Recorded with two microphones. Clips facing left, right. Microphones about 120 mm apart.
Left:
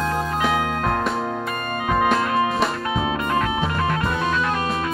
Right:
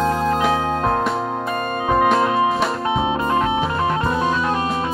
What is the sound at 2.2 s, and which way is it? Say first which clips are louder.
Music: right 3 dB; 25° right (ahead or behind).